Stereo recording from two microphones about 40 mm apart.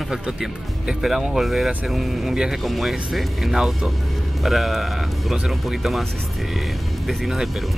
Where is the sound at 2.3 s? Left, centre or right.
Centre.